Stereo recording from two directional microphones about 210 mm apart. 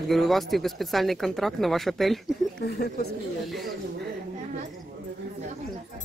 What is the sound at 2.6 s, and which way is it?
Speech, 50° left (ahead or behind).